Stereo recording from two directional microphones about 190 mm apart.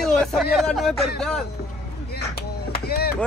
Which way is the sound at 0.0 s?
5° left (ahead or behind).